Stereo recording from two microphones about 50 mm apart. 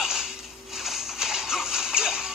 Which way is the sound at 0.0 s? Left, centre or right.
Centre.